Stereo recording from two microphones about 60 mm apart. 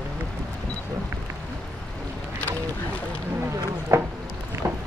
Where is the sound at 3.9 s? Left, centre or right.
Right.